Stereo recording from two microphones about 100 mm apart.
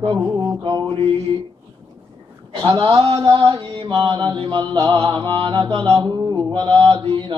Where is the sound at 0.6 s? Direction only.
50° right (ahead or behind).